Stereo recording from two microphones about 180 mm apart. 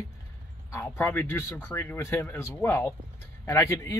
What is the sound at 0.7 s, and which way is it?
Speech, 10° left (ahead or behind).